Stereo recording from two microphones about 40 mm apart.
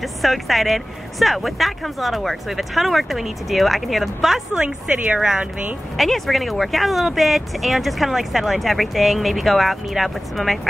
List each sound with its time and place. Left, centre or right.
0.2 s speech: centre
4.6 s a woman's voice: right
5.9 s speech: centre